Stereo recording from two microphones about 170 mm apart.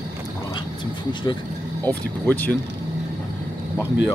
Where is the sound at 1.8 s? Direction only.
10° left (ahead or behind).